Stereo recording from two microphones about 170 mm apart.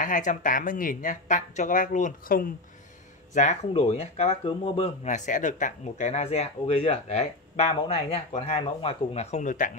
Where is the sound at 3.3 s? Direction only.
45° left (ahead or behind).